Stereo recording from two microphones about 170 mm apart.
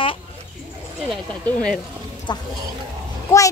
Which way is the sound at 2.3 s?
25° left (ahead or behind).